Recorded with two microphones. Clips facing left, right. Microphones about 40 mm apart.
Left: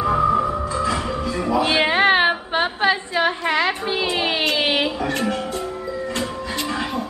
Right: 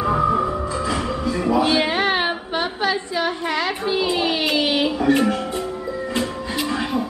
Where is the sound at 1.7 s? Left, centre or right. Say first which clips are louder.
Left 3 dB; left.